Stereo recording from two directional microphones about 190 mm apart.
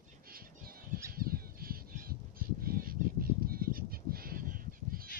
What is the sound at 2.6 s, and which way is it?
Bird, 50° right (ahead or behind).